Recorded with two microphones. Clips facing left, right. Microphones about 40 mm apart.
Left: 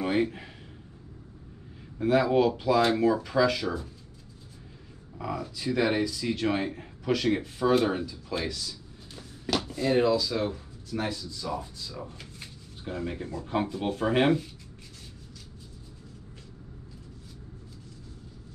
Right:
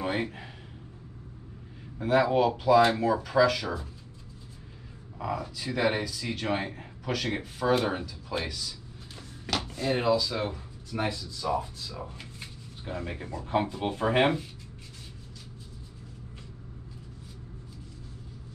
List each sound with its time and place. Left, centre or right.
0.0 s speech: centre
2.0 s speech: centre
3.6 s speech: centre
5.2 s speech: centre
8.3 s drawer open or close: centre
9.7 s speech: centre